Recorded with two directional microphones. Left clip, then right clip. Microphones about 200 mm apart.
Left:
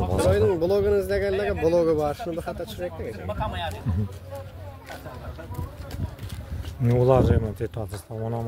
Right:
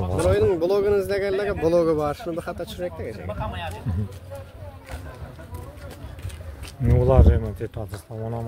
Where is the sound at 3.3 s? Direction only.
50° left (ahead or behind).